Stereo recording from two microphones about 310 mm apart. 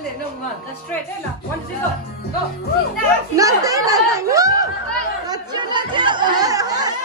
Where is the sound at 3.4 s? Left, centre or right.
Centre.